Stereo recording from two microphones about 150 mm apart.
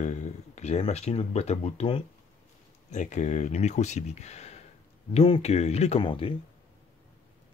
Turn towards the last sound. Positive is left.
turn(degrees=35)  # may be behind; listen again after turning